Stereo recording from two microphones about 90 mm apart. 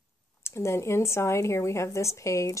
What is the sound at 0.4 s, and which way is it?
A woman's voice, 30° left (ahead or behind).